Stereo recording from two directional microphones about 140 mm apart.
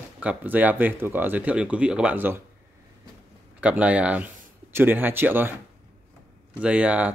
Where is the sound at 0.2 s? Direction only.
10° right (ahead or behind).